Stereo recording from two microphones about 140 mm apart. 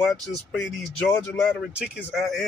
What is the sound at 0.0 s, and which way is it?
Speech, centre (ahead or behind).